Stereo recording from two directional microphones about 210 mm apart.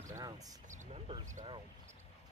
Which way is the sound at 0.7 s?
35° right (ahead or behind).